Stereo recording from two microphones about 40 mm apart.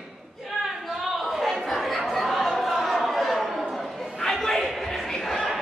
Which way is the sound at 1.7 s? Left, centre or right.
Centre.